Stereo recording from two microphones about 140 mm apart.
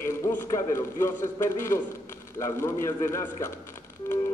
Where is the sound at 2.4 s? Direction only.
20° left (ahead or behind).